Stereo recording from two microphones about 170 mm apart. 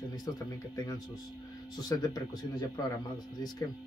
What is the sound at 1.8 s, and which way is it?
Speech, 25° left (ahead or behind).